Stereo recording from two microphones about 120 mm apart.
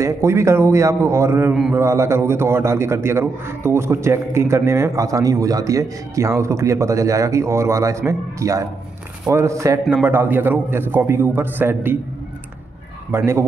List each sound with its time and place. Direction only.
0.0 s a man's voice: 25° right (ahead or behind)
13.1 s a man's voice: 20° right (ahead or behind)